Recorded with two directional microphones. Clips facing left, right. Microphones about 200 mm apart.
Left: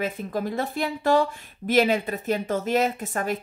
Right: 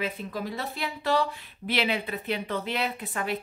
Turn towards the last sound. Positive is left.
turn(degrees=45)  # may be behind; listen again after turning